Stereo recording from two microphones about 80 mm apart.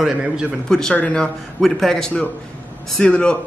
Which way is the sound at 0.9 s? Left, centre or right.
Centre.